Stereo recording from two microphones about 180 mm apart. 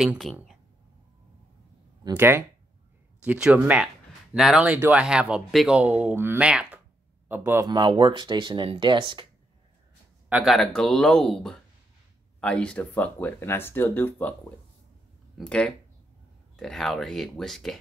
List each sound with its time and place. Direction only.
0.0 s speech: centre (ahead or behind)
2.1 s speech: 10° right (ahead or behind)
10.3 s speech: centre (ahead or behind)
15.3 s speech: 5° left (ahead or behind)